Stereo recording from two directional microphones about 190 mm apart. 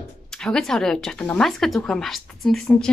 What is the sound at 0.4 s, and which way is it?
A woman's voice, 5° left (ahead or behind).